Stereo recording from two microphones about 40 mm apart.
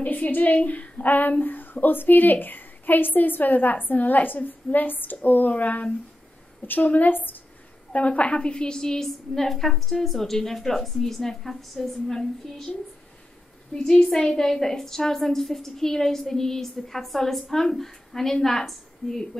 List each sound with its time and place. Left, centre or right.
0.0 s a woman's voice: left
7.1 s a woman's voice: left
7.9 s a woman's voice: left; by 11.9 s centre
12.1 s a woman's voice: centre
13.7 s a woman's voice: centre